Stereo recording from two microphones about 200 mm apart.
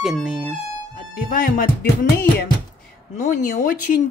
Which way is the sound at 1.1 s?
45° left (ahead or behind).